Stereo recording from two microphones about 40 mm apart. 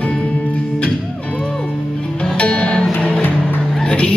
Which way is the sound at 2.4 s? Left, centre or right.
Left.